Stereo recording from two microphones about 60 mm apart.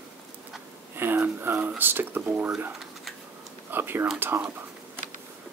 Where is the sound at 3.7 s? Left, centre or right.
Right.